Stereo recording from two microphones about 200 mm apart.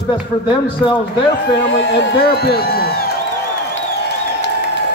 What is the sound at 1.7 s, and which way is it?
A man's voice, 50° left (ahead or behind).